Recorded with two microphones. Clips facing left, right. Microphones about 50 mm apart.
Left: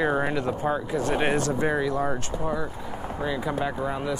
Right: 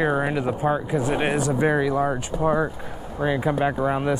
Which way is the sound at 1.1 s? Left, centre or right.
Centre.